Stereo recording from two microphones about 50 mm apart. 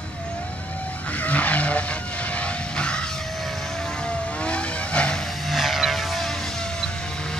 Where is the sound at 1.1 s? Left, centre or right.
Left.